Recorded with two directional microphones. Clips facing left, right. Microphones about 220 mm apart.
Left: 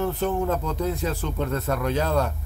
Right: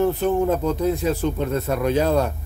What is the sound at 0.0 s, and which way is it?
Speech, 15° right (ahead or behind).